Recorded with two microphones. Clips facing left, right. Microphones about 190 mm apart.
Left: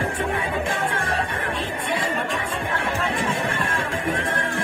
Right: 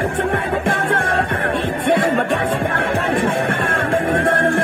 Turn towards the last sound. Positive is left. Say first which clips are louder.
# right 9 dB
turn(degrees=-55)  # may be behind; listen again after turning